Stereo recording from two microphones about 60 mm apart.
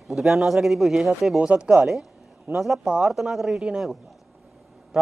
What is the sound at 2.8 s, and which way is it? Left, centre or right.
Speech, centre.